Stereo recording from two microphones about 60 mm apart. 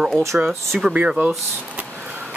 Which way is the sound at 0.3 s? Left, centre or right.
Right.